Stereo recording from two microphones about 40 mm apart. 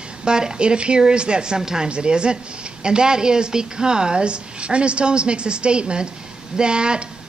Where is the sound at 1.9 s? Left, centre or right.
Right.